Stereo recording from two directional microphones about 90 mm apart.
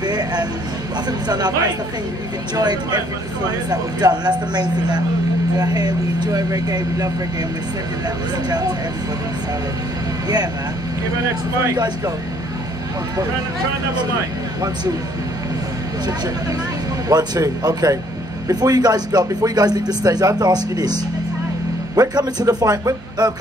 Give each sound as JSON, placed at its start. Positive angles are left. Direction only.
{"t": 0.0, "sound": "music", "side_deg": -50}
{"t": 1.2, "sound": "speech", "side_deg": -50}
{"t": 2.5, "sound": "speech", "side_deg": -50}
{"t": 8.5, "sound": "speech", "side_deg": -50}
{"t": 10.2, "sound": "speech", "side_deg": -50}
{"t": 11.7, "sound": "speech", "side_deg": -50}
{"t": 17.1, "sound": "speech", "side_deg": -50}